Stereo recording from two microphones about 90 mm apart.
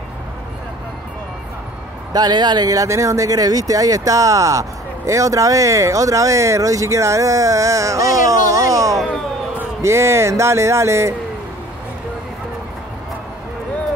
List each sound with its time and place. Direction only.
2.1 s speech: 50° right (ahead or behind); by 11.1 s 30° right (ahead or behind)